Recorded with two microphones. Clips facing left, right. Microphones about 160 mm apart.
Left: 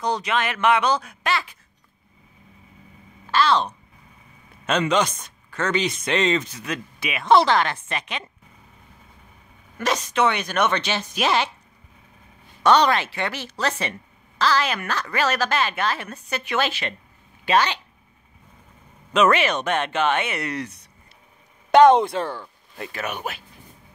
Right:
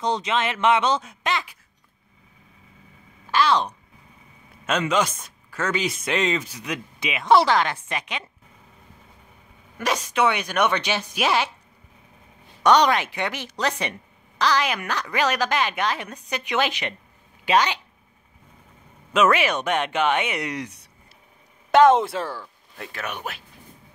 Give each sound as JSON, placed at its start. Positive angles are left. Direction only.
{"t": 0.0, "sound": "speech", "side_deg": -25}
{"t": 3.3, "sound": "speech", "side_deg": -15}
{"t": 9.8, "sound": "speech", "side_deg": -10}
{"t": 12.6, "sound": "speech", "side_deg": -15}
{"t": 19.1, "sound": "speech", "side_deg": -5}
{"t": 21.7, "sound": "speech", "side_deg": -5}